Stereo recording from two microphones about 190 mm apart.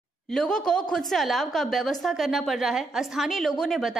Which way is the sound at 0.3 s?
5° left (ahead or behind).